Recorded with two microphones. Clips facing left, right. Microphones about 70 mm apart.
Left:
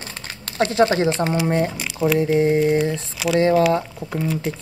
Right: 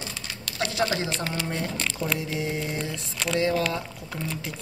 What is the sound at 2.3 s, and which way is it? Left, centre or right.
A woman's voice, left.